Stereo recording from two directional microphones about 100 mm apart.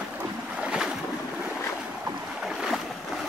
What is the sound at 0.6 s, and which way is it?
Boat, 10° right (ahead or behind).